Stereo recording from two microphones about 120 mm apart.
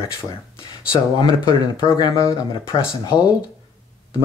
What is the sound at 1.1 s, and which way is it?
Speech, 40° left (ahead or behind).